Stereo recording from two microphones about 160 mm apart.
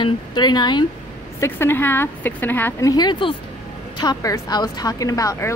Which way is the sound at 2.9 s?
25° left (ahead or behind).